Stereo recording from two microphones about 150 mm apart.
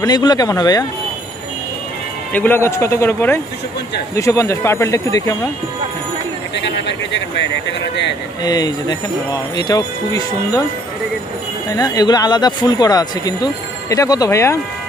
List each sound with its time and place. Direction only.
0.0 s speech: 25° left (ahead or behind)
2.3 s a man's voice: 15° left (ahead or behind)
8.5 s speech: 25° left (ahead or behind)
11.7 s speech: 25° left (ahead or behind)